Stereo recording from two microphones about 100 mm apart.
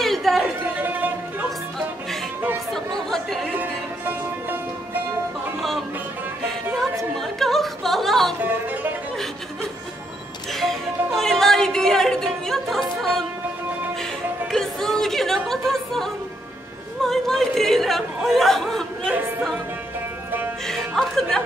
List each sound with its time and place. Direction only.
0.0 s chatter: centre (ahead or behind)
0.7 s music: 20° right (ahead or behind)
3.1 s music: 5° left (ahead or behind)
3.5 s music: 20° right (ahead or behind)
5.6 s music: centre (ahead or behind)
6.4 s a sound: 5° left (ahead or behind)
8.4 s music: 20° right (ahead or behind)
10.5 s music: 5° left (ahead or behind)
14.5 s music: 5° left (ahead or behind)
17.0 s a sound: 5° left (ahead or behind)
20.6 s music: 5° left (ahead or behind)